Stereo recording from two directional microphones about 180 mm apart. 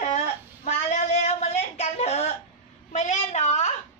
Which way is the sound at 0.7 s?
40° left (ahead or behind).